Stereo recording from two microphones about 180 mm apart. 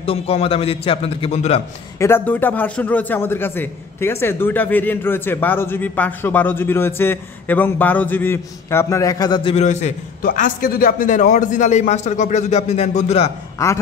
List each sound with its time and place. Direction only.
0.0 s a man's voice: 30° left (ahead or behind)
2.0 s a man's voice: 15° left (ahead or behind); by 13.3 s 35° left (ahead or behind)